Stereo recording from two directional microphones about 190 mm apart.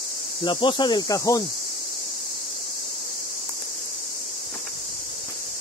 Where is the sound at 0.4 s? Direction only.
25° left (ahead or behind).